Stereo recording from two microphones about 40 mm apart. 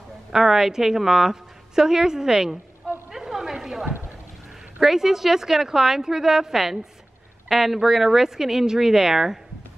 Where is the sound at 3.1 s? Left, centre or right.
Centre.